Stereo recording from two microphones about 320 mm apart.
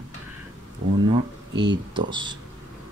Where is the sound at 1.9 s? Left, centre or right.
Centre.